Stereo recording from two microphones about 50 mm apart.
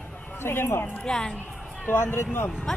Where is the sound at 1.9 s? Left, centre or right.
Left.